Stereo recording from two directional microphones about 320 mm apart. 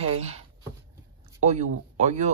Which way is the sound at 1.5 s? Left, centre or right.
Right.